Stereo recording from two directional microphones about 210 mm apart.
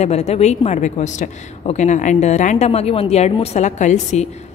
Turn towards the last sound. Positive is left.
turn(degrees=35)  # may be behind; listen again after turning